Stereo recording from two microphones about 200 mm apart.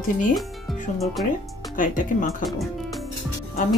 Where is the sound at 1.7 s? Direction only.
40° left (ahead or behind).